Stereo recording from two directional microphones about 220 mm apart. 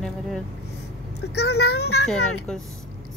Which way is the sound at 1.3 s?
50° left (ahead or behind).